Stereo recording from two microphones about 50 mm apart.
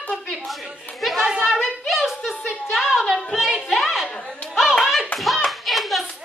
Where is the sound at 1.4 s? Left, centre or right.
Centre.